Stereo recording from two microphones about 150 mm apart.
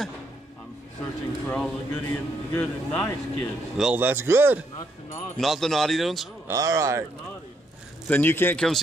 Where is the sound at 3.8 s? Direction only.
10° right (ahead or behind).